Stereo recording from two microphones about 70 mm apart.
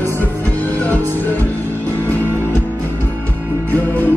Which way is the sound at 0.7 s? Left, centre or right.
Left.